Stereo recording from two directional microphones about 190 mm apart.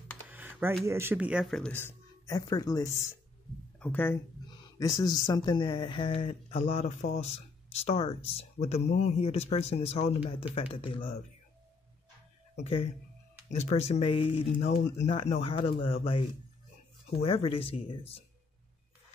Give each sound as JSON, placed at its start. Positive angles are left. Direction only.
{"t": 0.3, "sound": "computer keyboard", "side_deg": -10}
{"t": 0.8, "sound": "speech", "side_deg": -10}
{"t": 12.5, "sound": "speech", "side_deg": 30}